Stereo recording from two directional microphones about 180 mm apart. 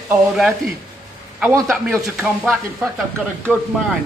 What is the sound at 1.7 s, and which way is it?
Speech, centre (ahead or behind).